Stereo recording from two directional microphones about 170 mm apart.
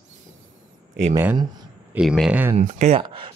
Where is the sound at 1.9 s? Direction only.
10° right (ahead or behind).